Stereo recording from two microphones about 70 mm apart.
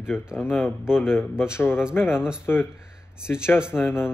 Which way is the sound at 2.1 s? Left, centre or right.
Centre.